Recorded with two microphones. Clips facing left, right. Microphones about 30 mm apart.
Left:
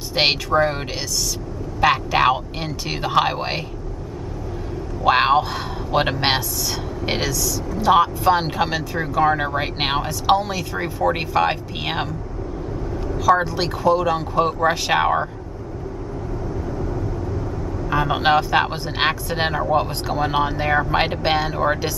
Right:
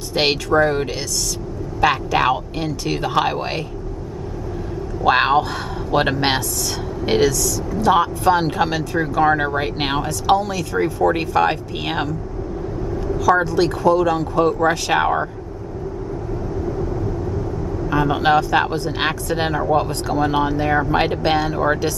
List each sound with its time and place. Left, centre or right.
0.1 s speech: centre
5.0 s speech: centre
9.6 s speech: centre
12.9 s vehicle: centre
13.4 s speech: centre
17.8 s speech: centre